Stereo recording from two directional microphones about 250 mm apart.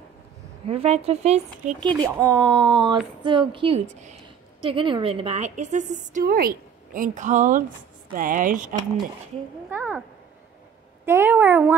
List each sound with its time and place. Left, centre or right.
0.7 s a woman's voice: right
9.7 s speech: centre
11.1 s speech: centre